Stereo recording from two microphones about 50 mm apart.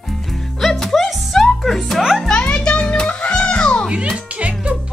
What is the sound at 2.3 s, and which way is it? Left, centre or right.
Music, left.